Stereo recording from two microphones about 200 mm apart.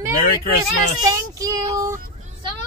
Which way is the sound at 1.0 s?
15° right (ahead or behind).